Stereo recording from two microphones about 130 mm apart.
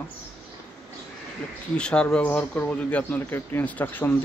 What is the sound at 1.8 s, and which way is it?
A man's voice, 10° left (ahead or behind).